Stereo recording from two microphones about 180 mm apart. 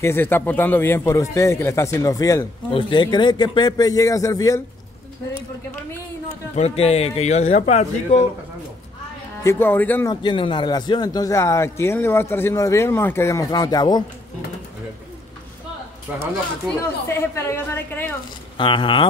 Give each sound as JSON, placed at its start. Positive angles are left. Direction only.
{"t": 0.0, "sound": "a man's voice", "side_deg": 10}
{"t": 6.5, "sound": "a man's voice", "side_deg": 35}
{"t": 9.4, "sound": "a man's voice", "side_deg": 15}
{"t": 10.2, "sound": "a man's voice", "side_deg": 25}
{"t": 16.6, "sound": "a man's voice", "side_deg": 15}
{"t": 18.6, "sound": "speech", "side_deg": 30}